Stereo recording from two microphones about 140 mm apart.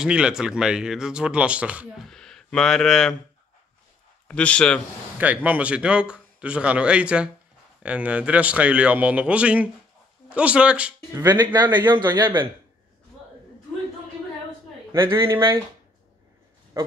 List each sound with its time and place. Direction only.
0.0 s speech: 5° right (ahead or behind)
4.3 s speech: 10° left (ahead or behind)
5.2 s a man's voice: 10° right (ahead or behind)
11.1 s a man's voice: 30° right (ahead or behind)
12.1 s a man's voice: 15° right (ahead or behind)
14.9 s speech: 20° right (ahead or behind)